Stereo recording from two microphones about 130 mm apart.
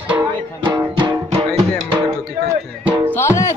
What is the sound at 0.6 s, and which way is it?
Music, 35° right (ahead or behind).